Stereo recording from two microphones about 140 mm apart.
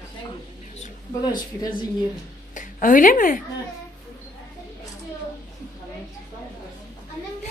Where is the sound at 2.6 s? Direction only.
75° left (ahead or behind).